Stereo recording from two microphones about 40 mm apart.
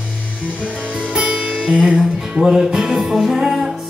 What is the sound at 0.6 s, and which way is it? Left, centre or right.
Music, right.